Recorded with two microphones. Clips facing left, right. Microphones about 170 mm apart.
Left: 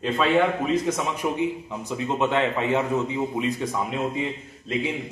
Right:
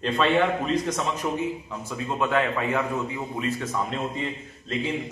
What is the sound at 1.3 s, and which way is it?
A man's voice, 20° left (ahead or behind).